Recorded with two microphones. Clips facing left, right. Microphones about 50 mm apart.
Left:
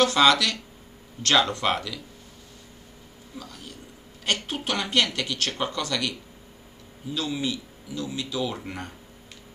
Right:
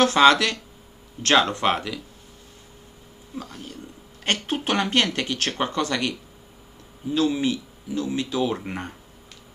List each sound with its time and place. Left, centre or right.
0.0 s speech: right
3.3 s speech: right